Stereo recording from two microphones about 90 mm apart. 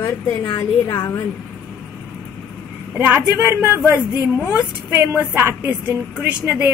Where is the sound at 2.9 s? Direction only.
20° right (ahead or behind).